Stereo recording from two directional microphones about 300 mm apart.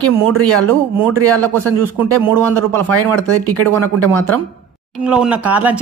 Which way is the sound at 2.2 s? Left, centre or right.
Centre.